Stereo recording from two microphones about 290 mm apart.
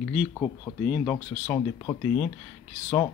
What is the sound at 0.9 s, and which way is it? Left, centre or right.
Speech, centre.